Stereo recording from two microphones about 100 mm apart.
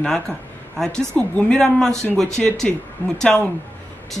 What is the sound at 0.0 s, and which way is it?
A woman's voice, 5° left (ahead or behind).